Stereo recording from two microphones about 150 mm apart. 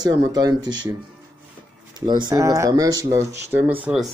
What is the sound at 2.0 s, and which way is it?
Speech, 25° right (ahead or behind).